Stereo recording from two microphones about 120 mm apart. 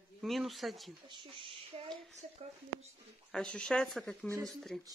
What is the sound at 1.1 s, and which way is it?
Speech, 45° right (ahead or behind).